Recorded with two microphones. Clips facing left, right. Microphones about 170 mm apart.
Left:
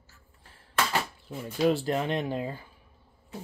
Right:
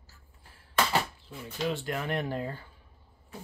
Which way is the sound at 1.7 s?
35° left (ahead or behind).